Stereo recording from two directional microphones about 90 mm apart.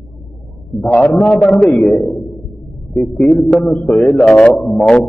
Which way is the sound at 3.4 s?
Centre (ahead or behind).